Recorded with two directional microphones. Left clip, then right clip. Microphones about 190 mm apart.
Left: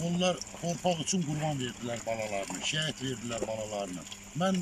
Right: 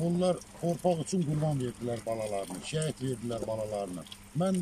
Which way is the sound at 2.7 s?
20° right (ahead or behind).